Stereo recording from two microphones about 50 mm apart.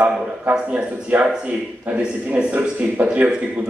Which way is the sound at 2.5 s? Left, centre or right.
Right.